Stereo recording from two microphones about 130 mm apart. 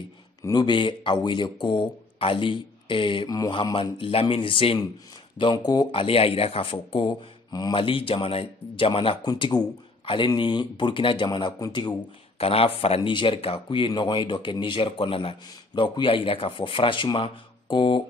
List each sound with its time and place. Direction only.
0.4 s a man's voice: 30° left (ahead or behind)
3.3 s a man's voice: 30° left (ahead or behind)
5.9 s speech: 45° left (ahead or behind)
7.1 s speech: 30° left (ahead or behind)
9.2 s a man's voice: 30° left (ahead or behind)
12.4 s a man's voice: 50° left (ahead or behind)